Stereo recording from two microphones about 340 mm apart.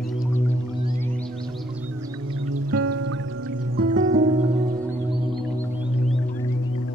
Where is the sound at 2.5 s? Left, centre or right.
Right.